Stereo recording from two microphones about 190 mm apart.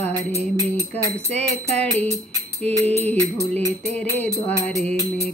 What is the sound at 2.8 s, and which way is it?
Music, 35° right (ahead or behind).